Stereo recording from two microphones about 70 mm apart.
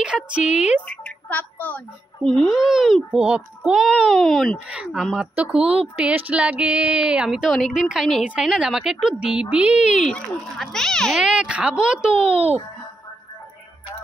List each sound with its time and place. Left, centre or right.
0.0 s speech: centre
1.3 s a woman's voice: left
2.2 s a child's voice: centre
4.6 s a child's voice: centre
10.0 s speech: centre
11.1 s speech: centre